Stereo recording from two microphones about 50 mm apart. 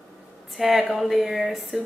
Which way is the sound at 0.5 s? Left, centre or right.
Centre.